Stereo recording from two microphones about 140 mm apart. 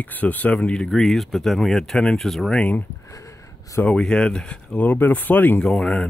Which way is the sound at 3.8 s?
5° left (ahead or behind).